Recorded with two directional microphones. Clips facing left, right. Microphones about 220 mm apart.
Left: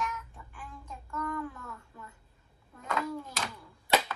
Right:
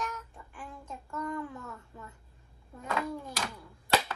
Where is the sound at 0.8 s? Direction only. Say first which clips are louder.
Even; 25° right (ahead or behind).